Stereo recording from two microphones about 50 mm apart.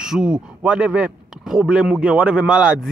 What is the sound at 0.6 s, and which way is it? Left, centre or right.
Speech, right.